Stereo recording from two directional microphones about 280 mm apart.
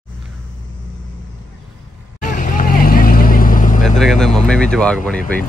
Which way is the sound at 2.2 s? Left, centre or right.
Left.